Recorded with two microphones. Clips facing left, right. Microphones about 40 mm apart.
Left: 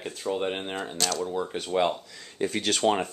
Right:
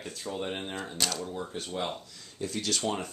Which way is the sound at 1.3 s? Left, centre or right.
Left.